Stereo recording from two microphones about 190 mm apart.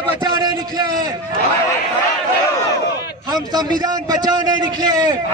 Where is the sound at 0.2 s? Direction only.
20° right (ahead or behind).